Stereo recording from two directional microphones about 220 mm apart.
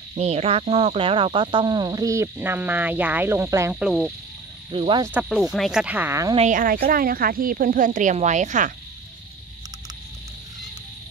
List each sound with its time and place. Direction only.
0.1 s cricket: 30° right (ahead or behind); by 4.1 s 5° right (ahead or behind)
4.6 s speech: 20° right (ahead or behind)
5.1 s speech: centre (ahead or behind)
6.3 s speech: 35° right (ahead or behind)